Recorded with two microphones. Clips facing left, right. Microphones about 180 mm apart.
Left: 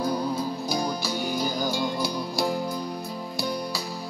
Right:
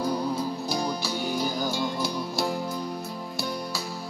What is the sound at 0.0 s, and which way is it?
Music, 10° right (ahead or behind).